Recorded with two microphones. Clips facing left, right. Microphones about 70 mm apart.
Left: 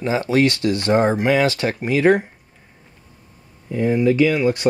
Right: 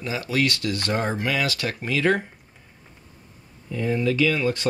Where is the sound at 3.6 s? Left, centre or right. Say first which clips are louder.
Left 6 dB; left.